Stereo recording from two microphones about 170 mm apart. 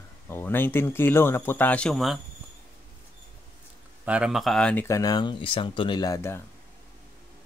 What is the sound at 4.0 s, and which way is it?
Speech, 5° right (ahead or behind).